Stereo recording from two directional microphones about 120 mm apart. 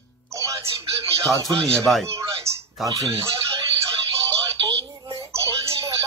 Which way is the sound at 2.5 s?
20° right (ahead or behind).